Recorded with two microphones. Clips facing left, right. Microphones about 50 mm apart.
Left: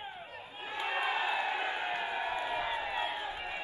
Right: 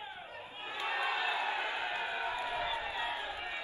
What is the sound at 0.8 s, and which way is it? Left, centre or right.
Crowd, left.